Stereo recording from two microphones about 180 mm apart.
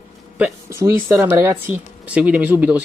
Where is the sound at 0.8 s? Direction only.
15° right (ahead or behind).